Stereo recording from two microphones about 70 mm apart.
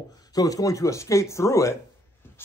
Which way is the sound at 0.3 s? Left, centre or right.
Left.